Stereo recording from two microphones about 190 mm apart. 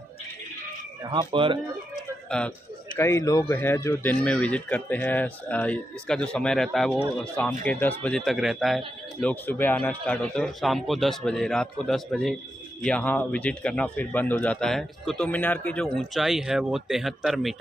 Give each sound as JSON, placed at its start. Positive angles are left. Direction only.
{"t": 1.0, "sound": "speech", "side_deg": -25}
{"t": 2.2, "sound": "a man's voice", "side_deg": 5}
{"t": 3.0, "sound": "a man's voice", "side_deg": 15}